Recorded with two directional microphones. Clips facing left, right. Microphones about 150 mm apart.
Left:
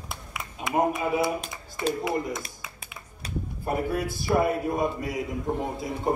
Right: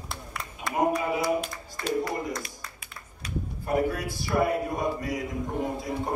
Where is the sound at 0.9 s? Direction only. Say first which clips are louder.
Even; 20° left (ahead or behind).